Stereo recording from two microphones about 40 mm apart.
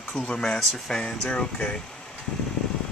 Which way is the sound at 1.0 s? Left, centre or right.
Left.